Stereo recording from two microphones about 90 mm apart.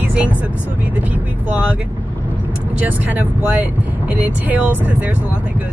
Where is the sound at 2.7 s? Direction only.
20° right (ahead or behind).